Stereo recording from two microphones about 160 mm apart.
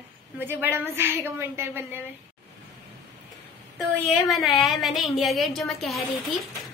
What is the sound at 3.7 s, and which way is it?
A woman's voice, centre (ahead or behind).